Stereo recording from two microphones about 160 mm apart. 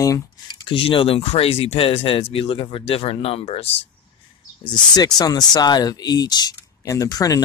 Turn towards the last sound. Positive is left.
turn(degrees=25)  # may be behind; listen again after turning